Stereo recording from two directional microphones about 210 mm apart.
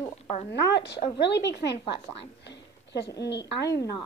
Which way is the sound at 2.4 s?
55° left (ahead or behind).